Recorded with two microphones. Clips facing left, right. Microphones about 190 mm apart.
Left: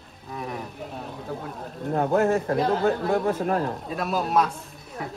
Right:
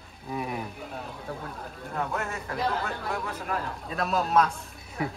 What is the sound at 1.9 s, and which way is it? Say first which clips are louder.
Speech: left 11 dB; 50° left (ahead or behind).